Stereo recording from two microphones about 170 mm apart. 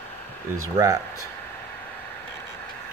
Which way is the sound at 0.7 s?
20° right (ahead or behind).